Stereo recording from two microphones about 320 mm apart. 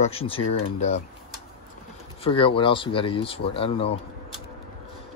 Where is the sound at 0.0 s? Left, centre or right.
Centre.